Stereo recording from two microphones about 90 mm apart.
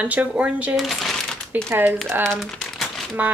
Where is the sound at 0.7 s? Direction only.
Centre (ahead or behind).